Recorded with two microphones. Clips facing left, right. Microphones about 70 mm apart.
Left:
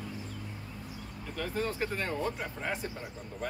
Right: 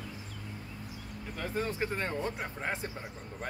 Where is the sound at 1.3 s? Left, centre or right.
Right.